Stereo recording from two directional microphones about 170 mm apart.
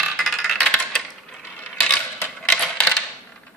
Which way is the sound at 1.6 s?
5° left (ahead or behind).